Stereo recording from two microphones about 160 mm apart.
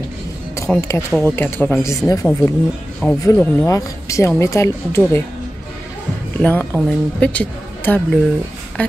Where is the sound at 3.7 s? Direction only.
20° left (ahead or behind).